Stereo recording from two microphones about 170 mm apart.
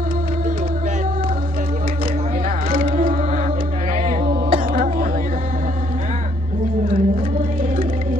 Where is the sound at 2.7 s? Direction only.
55° right (ahead or behind).